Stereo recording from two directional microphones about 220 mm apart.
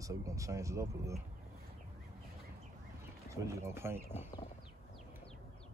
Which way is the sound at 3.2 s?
15° right (ahead or behind).